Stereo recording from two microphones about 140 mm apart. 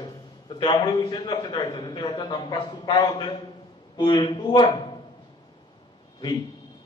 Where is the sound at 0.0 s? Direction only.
35° left (ahead or behind).